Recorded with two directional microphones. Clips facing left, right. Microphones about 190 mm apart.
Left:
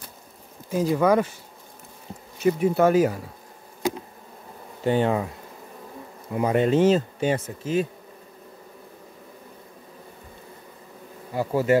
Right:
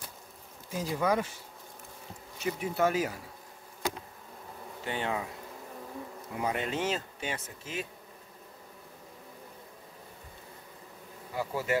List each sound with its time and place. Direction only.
0.7 s speech: 60° left (ahead or behind)
2.4 s speech: 50° left (ahead or behind)
4.8 s speech: 40° left (ahead or behind)
6.3 s speech: 55° left (ahead or behind)
6.6 s speech: 35° left (ahead or behind)
11.3 s speech: 40° left (ahead or behind)